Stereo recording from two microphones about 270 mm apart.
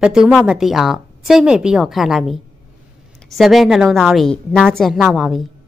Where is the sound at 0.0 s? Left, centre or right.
Centre.